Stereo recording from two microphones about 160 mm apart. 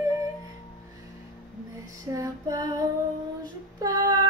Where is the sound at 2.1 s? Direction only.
20° right (ahead or behind).